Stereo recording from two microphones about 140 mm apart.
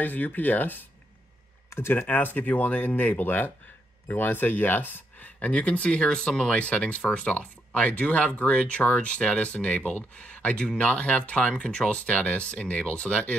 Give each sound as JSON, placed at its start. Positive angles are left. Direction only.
{"t": 0.0, "sound": "speech", "side_deg": 10}